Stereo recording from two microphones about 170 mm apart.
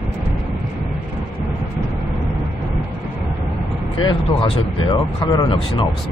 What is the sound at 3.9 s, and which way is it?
Speech, 30° left (ahead or behind).